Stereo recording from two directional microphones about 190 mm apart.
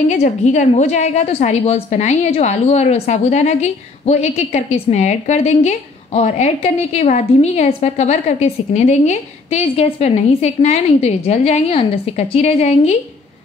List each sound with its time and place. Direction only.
0.1 s a woman's voice: 35° left (ahead or behind)